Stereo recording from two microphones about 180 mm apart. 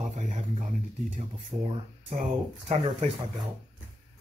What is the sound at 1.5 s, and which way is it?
Speech, 30° right (ahead or behind).